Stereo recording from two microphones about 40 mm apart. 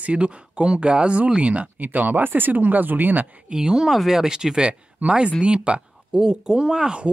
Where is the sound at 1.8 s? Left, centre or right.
Right.